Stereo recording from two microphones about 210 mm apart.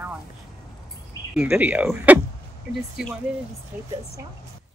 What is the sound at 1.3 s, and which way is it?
Speech, 5° right (ahead or behind).